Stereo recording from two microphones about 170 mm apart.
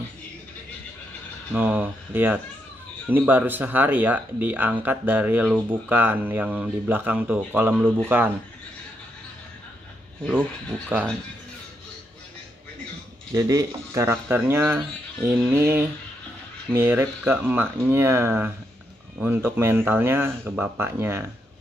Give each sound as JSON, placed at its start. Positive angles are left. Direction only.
{"t": 1.5, "sound": "speech", "side_deg": -10}
{"t": 10.9, "sound": "speech", "side_deg": -15}
{"t": 13.3, "sound": "speech", "side_deg": -20}